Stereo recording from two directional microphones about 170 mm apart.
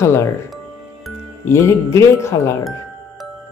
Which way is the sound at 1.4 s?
15° left (ahead or behind).